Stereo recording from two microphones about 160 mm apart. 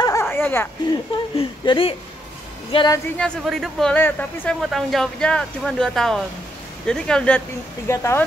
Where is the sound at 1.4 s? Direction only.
30° left (ahead or behind).